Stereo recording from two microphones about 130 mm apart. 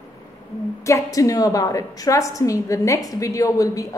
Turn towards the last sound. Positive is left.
turn(degrees=25)  # may be behind; listen again after turning